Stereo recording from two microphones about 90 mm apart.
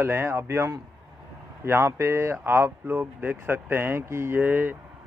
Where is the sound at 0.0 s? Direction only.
25° right (ahead or behind).